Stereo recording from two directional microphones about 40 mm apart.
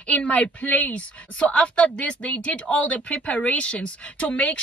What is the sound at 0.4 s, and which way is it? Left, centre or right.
A woman's voice, left.